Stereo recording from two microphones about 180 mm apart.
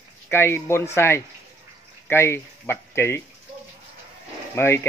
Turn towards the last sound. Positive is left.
turn(degrees=15)  # may be behind; listen again after turning